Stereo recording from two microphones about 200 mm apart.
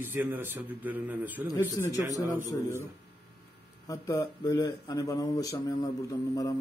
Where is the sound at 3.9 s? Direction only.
15° left (ahead or behind).